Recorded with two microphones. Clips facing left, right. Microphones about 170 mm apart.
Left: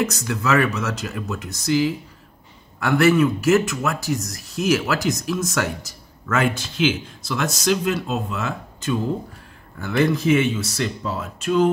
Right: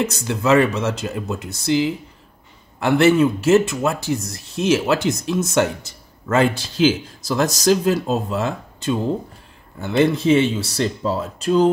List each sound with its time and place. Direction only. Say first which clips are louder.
0.0 s speech: right 2 dB; 30° right (ahead or behind)